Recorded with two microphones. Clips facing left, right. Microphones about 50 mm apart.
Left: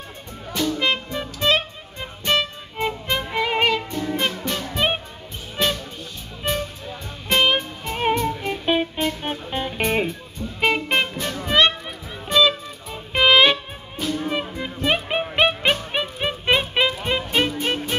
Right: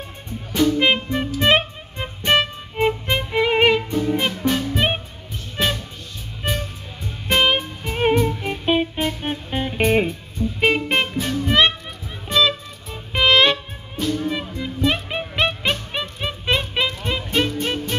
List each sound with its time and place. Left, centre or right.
0.6 s speech: right
1.4 s music: right
4.1 s music: centre
6.4 s music: centre
14.2 s music: centre